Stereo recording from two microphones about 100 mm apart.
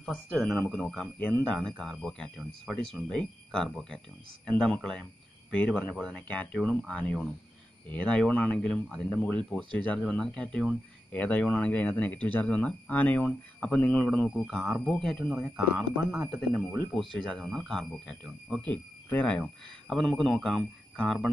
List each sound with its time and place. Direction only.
0.0 s speech: centre (ahead or behind)
18.7 s speech: 15° left (ahead or behind)